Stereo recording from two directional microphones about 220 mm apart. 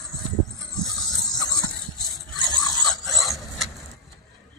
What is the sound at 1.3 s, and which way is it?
Dog, 15° left (ahead or behind).